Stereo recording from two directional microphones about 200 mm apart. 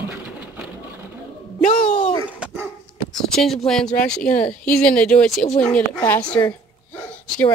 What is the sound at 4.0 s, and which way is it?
Speech, 5° left (ahead or behind).